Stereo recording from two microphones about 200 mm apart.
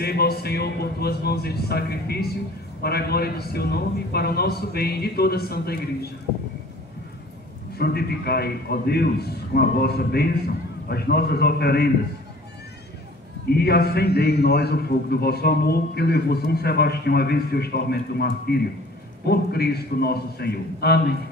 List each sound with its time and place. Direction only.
0.0 s a man's voice: 50° left (ahead or behind)
7.7 s a man's voice: 50° left (ahead or behind)
13.6 s a man's voice: 50° left (ahead or behind)